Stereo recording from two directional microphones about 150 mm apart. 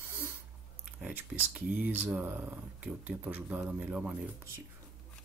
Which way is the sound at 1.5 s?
10° right (ahead or behind).